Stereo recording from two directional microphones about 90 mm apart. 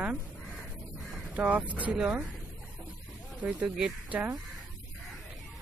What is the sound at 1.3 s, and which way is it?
Speech, 15° right (ahead or behind).